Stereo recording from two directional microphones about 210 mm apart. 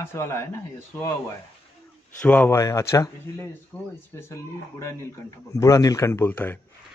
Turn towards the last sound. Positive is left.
turn(degrees=10)  # may be behind; listen again after turning